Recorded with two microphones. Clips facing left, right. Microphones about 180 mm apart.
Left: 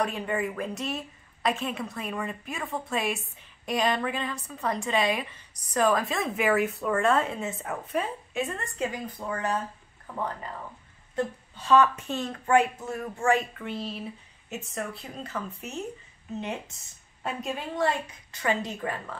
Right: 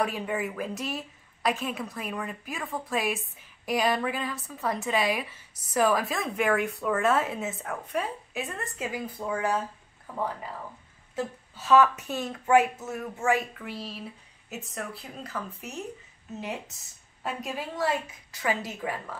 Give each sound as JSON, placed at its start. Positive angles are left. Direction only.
{"t": 0.0, "sound": "a woman's voice", "side_deg": -5}